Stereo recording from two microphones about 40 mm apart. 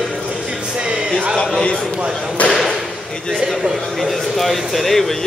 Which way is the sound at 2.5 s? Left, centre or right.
Centre.